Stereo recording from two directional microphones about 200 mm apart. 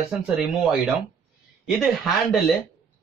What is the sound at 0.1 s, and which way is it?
Speech, 5° right (ahead or behind).